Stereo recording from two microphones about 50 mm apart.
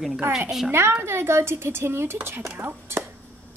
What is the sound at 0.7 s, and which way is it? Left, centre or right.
A woman's voice, right.